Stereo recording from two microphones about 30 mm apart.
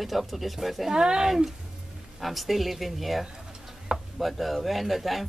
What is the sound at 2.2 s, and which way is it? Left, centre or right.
Speech, centre.